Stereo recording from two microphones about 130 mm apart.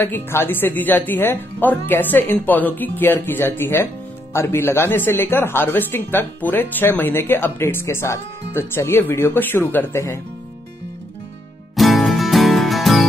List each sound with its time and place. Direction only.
0.0 s speech: 15° left (ahead or behind)
11.7 s music: centre (ahead or behind)